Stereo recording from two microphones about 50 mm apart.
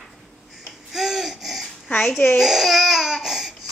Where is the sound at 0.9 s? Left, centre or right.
Centre.